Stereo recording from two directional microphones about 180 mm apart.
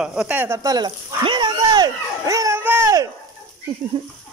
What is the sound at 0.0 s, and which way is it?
Speech, 5° right (ahead or behind).